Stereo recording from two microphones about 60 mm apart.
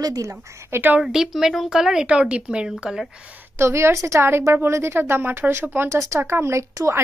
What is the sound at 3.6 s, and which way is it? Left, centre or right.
Speech, right.